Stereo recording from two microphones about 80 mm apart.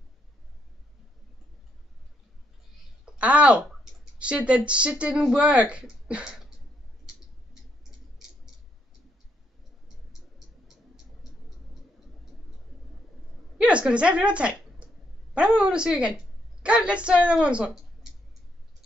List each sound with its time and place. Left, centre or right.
3.2 s speech: centre
13.6 s a sound: centre
15.3 s speech: centre